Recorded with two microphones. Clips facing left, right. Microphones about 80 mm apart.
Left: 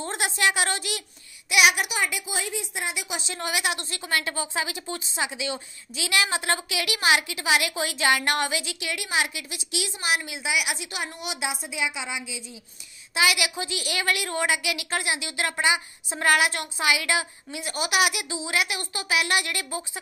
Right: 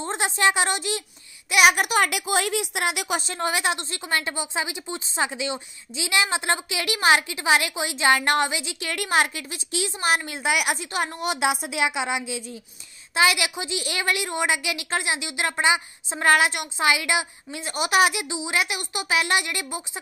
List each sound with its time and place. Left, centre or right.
0.0 s a woman's voice: right
1.5 s a woman's voice: right
2.0 s a woman's voice: right
3.2 s a woman's voice: right
5.0 s a woman's voice: right
8.7 s a woman's voice: right
11.4 s a woman's voice: right
13.1 s a woman's voice: right